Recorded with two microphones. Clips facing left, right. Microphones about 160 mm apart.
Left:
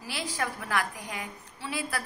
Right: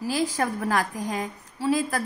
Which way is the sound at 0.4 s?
40° right (ahead or behind).